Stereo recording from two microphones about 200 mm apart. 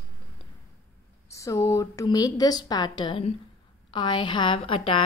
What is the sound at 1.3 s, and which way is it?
A woman's voice, 15° left (ahead or behind).